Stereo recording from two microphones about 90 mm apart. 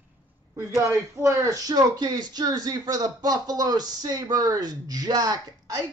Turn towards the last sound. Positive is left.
turn(degrees=-45)  # may be behind; listen again after turning